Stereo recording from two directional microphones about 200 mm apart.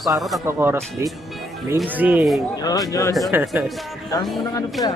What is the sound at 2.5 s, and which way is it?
Speech, 20° left (ahead or behind).